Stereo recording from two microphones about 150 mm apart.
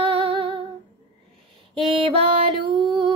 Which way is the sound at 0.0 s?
35° right (ahead or behind).